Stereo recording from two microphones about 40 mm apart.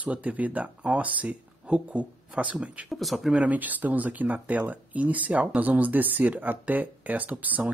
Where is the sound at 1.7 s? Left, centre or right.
Right.